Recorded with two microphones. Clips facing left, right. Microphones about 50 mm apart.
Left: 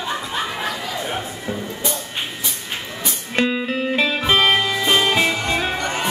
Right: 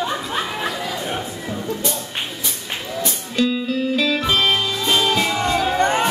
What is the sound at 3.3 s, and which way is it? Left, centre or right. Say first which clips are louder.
Music: even; left.